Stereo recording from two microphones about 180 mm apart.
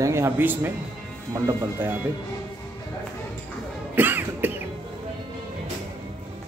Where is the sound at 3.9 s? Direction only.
10° right (ahead or behind).